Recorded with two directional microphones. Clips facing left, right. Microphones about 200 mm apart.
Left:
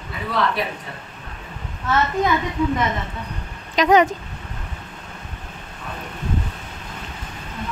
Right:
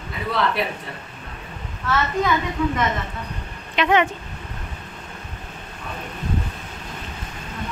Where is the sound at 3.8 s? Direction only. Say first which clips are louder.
Left 4 dB; 40° left (ahead or behind).